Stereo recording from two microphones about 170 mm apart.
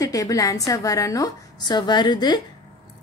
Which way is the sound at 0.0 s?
20° left (ahead or behind).